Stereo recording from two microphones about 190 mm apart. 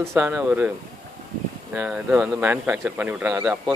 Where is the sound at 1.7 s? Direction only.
5° right (ahead or behind).